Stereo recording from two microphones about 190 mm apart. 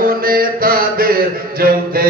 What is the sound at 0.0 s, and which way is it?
Mantra, 50° right (ahead or behind).